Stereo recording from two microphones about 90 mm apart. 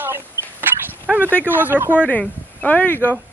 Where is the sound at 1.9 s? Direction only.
15° left (ahead or behind).